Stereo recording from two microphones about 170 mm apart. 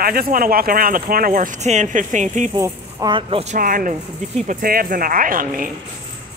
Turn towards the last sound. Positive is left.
turn(degrees=-55)  # may be behind; listen again after turning